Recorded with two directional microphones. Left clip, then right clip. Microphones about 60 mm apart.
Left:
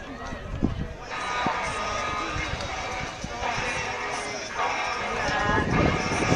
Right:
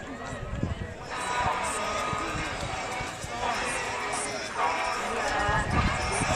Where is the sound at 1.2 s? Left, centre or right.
Left.